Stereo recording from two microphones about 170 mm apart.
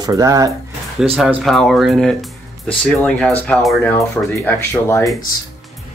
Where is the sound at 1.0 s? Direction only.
5° right (ahead or behind); by 5.0 s 15° left (ahead or behind).